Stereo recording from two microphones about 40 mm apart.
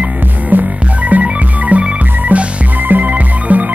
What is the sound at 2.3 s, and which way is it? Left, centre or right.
Music, right.